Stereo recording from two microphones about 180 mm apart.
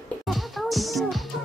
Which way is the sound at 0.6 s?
Centre (ahead or behind).